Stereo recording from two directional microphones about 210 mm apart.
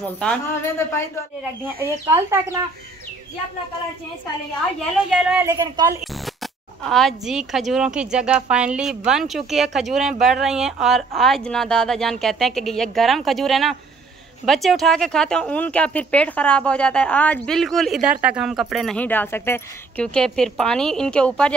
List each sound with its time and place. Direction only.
0.2 s speech: 10° left (ahead or behind)
1.6 s speech: 10° right (ahead or behind)
5.4 s speech: 15° right (ahead or behind)
6.2 s speech: centre (ahead or behind)